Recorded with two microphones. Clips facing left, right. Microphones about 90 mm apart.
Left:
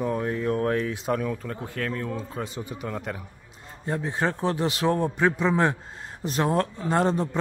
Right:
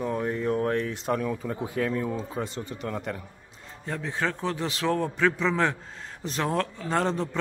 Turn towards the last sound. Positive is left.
turn(degrees=15)  # may be behind; listen again after turning